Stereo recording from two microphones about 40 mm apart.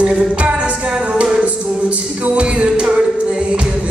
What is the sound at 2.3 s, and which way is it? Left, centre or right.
Music, right.